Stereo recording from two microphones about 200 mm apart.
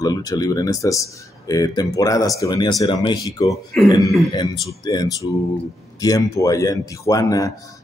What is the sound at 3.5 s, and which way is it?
Speech, centre (ahead or behind).